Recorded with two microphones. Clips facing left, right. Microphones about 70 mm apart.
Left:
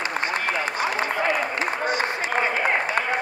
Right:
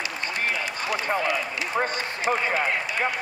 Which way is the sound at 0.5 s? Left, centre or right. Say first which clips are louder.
Left 3 dB; left.